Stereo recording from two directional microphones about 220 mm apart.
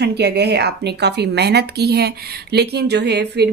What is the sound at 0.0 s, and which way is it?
Speech, 50° right (ahead or behind).